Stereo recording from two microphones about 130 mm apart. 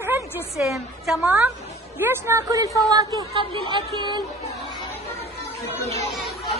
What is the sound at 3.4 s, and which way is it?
Speech, 40° right (ahead or behind).